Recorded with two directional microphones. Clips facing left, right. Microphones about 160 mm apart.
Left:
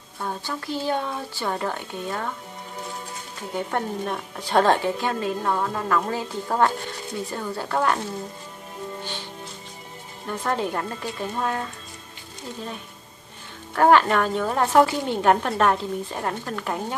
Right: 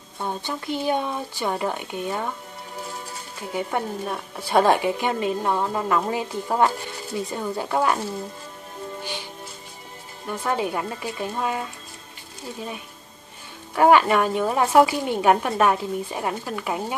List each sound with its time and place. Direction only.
0.2 s a woman's voice: 20° right (ahead or behind)
3.5 s a woman's voice: 5° right (ahead or behind)
10.2 s a woman's voice: 5° right (ahead or behind)
13.7 s a woman's voice: 10° right (ahead or behind)